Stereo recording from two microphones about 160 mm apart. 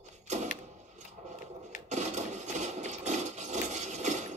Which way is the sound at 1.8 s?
45° right (ahead or behind).